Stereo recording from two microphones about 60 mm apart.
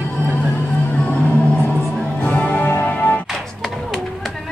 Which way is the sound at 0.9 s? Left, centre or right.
Left.